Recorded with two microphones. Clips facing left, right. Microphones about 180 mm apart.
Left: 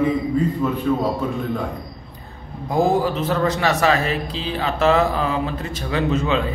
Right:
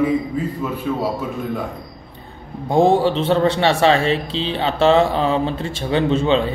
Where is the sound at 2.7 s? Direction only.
30° right (ahead or behind).